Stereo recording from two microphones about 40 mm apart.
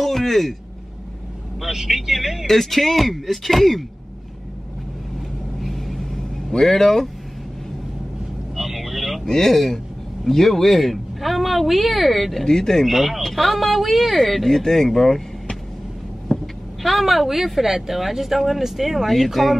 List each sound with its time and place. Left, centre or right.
0.0 s speech: centre
1.6 s speech: centre
2.4 s speech: centre
5.6 s vehicle: centre
8.5 s vehicle: centre
9.3 s speech: centre
12.4 s speech: centre
12.8 s speech: centre
16.3 s vehicle: left
16.8 s speech: centre